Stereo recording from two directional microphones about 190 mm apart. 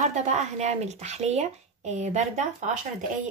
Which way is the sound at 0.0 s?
40° right (ahead or behind).